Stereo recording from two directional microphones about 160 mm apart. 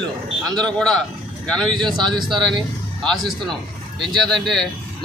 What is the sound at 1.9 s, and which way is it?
Speech, 30° right (ahead or behind).